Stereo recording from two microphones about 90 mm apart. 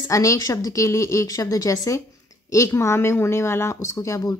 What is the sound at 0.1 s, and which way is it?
Speech, 35° left (ahead or behind).